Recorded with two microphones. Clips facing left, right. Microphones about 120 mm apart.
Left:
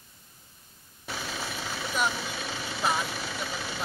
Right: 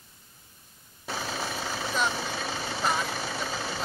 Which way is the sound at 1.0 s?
35° right (ahead or behind).